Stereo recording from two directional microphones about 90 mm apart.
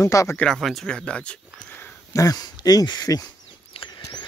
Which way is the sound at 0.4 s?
5° left (ahead or behind).